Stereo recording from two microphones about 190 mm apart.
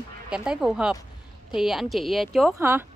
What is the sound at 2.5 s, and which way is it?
Speech, 15° right (ahead or behind).